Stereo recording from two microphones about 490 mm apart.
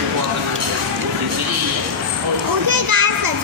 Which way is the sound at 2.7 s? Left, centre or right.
Right.